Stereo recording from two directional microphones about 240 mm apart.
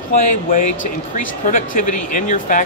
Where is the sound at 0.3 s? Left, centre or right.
Left.